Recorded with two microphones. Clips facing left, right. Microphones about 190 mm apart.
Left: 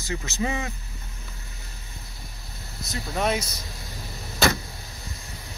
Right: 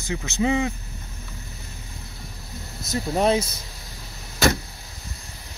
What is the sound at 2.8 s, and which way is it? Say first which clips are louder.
Speech: right 6 dB; 45° right (ahead or behind).